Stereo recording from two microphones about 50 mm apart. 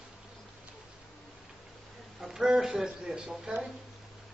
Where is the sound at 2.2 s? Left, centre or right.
Centre.